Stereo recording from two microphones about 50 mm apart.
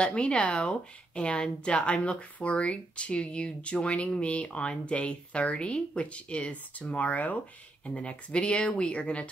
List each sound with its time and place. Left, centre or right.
0.0 s speech: left